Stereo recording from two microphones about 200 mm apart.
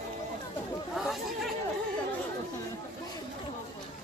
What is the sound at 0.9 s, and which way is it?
Speech, centre (ahead or behind).